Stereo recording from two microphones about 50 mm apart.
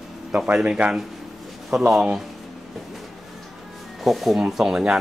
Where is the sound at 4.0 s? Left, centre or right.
Centre.